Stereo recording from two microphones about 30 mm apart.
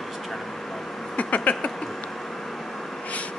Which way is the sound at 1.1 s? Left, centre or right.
Left.